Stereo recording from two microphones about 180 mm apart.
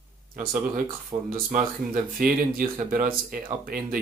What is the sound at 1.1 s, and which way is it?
Speech, 30° right (ahead or behind).